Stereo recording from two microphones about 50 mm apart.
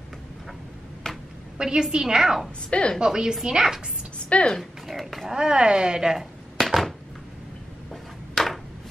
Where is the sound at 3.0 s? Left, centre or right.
Centre.